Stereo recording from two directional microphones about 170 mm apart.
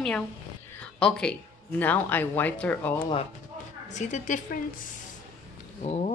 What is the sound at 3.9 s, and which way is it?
Speech, 45° left (ahead or behind).